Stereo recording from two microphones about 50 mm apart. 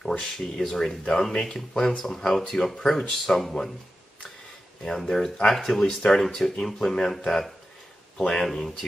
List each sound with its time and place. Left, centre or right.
0.2 s speech: centre
4.8 s speech: centre
8.2 s speech: left
8.5 s speech: centre